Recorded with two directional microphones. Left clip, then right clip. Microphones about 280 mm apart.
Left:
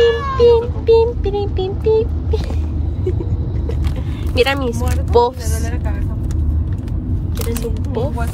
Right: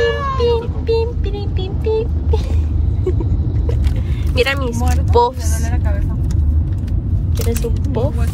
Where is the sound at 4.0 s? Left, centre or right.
Centre.